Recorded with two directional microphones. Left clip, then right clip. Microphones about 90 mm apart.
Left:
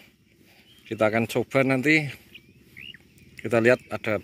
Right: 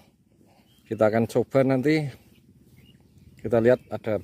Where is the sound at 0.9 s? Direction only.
65° right (ahead or behind).